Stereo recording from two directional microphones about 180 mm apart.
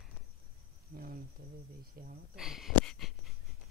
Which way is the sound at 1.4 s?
50° right (ahead or behind).